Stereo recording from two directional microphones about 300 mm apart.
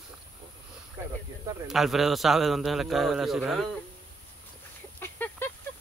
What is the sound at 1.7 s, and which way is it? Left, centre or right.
A man's voice, centre.